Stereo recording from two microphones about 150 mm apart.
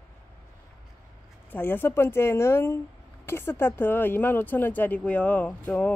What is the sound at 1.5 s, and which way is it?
Speech, 15° left (ahead or behind).